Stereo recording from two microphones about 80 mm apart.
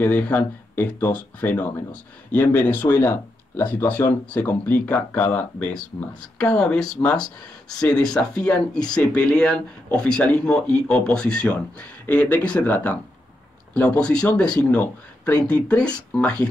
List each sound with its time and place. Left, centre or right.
0.0 s speech: left